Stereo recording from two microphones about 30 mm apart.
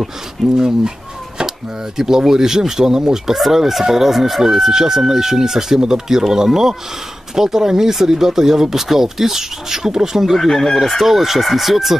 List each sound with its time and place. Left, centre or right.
0.6 s speech: right
2.0 s speech: centre
10.5 s chicken: centre
10.8 s speech: centre